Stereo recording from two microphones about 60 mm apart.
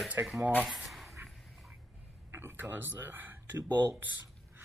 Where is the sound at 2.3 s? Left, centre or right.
Right.